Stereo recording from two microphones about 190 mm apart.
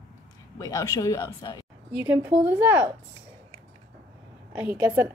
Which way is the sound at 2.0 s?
10° right (ahead or behind).